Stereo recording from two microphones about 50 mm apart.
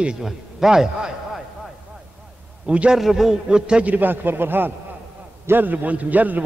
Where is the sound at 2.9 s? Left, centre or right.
Centre.